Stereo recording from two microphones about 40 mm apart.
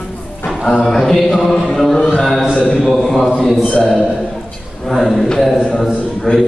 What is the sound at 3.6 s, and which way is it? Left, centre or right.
Speech, left.